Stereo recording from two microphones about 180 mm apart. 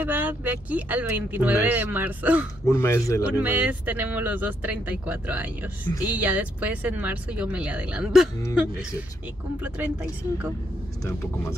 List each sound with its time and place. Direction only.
0.0 s speech: 10° right (ahead or behind)
2.6 s speech: 15° left (ahead or behind)
3.3 s speech: 10° right (ahead or behind)
9.6 s speech: 10° right (ahead or behind)